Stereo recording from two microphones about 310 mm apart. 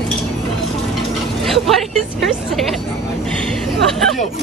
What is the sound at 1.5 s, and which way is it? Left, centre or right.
A woman's voice, centre.